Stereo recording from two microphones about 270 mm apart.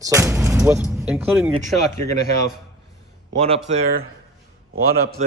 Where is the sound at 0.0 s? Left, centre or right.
Centre.